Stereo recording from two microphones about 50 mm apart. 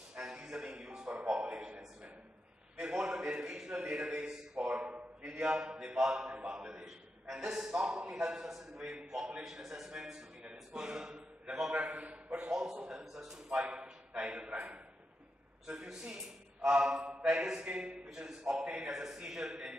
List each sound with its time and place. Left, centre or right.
0.1 s music: centre
1.3 s a sound: right
2.8 s a man's voice: centre
6.8 s a man's voice: centre
11.7 s a man's voice: right
12.4 s a man's voice: centre
14.2 s a man's voice: right
15.6 s a man's voice: centre